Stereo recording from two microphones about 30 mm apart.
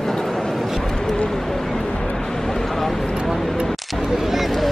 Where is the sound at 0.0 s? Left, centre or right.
Centre.